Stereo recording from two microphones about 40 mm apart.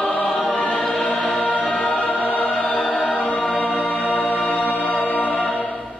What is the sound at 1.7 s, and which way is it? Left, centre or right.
Music, left.